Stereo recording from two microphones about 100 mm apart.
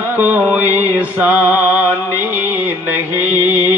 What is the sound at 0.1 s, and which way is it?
Music, 20° right (ahead or behind).